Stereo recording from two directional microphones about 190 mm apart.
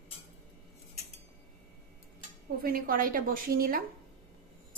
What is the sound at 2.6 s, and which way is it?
A woman's voice, 50° right (ahead or behind).